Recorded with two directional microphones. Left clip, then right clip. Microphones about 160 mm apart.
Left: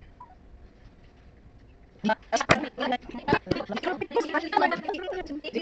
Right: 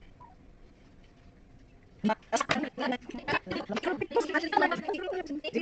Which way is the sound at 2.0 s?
40° right (ahead or behind).